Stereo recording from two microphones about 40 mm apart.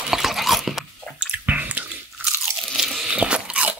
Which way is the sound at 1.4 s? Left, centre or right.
Right.